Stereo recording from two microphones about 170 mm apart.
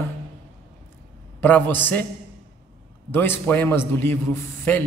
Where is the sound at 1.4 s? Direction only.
10° left (ahead or behind).